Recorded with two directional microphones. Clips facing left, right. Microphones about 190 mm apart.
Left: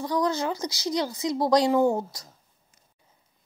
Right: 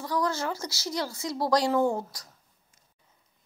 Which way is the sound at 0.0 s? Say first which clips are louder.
Left 3 dB; 20° left (ahead or behind).